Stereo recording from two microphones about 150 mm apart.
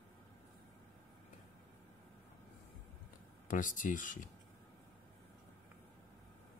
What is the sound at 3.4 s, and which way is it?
Speech, 60° left (ahead or behind).